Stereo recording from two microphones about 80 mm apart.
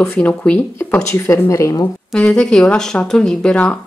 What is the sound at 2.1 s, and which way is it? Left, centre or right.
Speech, centre.